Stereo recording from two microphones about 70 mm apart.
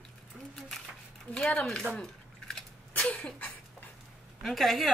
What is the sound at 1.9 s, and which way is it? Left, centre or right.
Drip, centre.